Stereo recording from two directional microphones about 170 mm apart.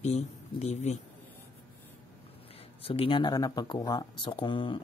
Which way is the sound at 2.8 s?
35° left (ahead or behind).